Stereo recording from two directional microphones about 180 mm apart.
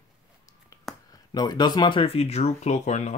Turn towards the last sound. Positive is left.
turn(degrees=40)  # may be behind; listen again after turning